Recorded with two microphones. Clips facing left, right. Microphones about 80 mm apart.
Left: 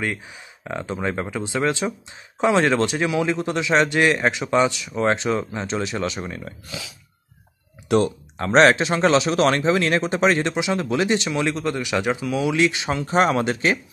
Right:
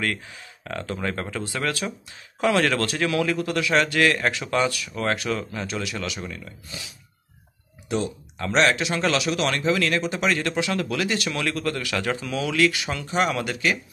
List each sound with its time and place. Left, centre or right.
0.0 s a man's voice: centre
7.9 s speech: left
8.4 s speech: left
10.5 s a man's voice: left
12.5 s speech: left